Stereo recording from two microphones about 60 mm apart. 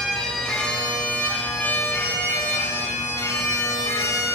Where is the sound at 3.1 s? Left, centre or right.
Left.